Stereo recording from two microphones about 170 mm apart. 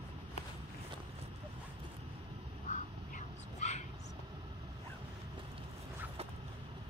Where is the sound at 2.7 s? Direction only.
45° left (ahead or behind).